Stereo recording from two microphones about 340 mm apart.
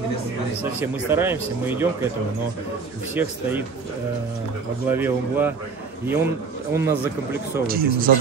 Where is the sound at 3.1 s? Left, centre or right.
Centre.